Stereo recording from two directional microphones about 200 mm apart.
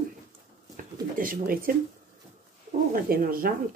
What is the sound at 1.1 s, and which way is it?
Speech, 45° right (ahead or behind).